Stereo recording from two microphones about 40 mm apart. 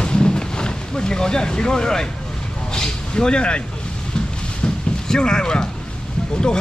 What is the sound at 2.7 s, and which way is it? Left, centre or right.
Speech, centre.